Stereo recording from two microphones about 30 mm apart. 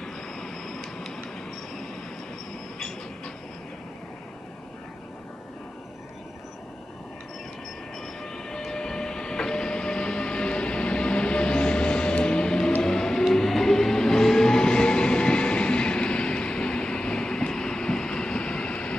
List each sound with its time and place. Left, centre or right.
0.0 s train: centre
8.2 s train: centre
12.8 s music: centre
13.5 s train: centre; by 18.9 s left